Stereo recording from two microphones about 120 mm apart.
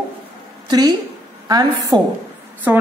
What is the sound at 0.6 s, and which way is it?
A woman's voice, 35° right (ahead or behind).